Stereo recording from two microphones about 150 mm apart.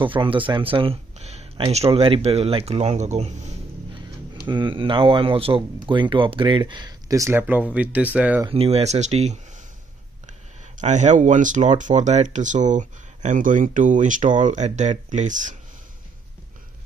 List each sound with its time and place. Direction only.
0.0 s speech: 35° right (ahead or behind); by 3.3 s 50° right (ahead or behind)
4.5 s speech: 30° right (ahead or behind); by 8.5 s 10° right (ahead or behind)
8.5 s speech: 40° right (ahead or behind)
10.8 s speech: 55° right (ahead or behind)